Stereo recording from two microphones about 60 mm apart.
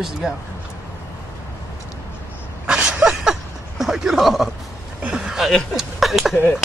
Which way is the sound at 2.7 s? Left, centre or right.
Centre.